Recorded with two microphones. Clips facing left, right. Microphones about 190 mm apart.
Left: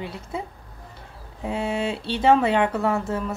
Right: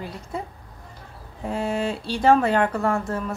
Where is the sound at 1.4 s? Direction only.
5° left (ahead or behind).